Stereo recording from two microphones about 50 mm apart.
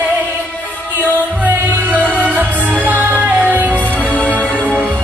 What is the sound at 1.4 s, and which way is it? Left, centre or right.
Music, right.